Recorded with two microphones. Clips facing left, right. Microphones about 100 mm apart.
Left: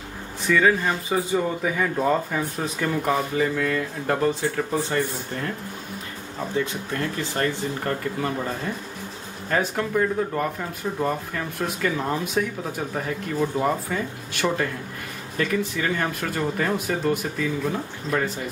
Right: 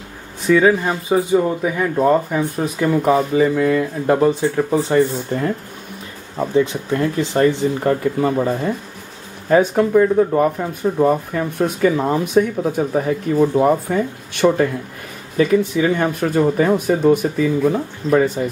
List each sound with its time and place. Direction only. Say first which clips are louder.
0.5 s speech: right 6 dB; 15° right (ahead or behind)
6.5 s speech: right 9 dB; 20° right (ahead or behind)
8.4 s speech: right 9 dB; 30° right (ahead or behind)
9.5 s speech: right 10 dB; 15° right (ahead or behind)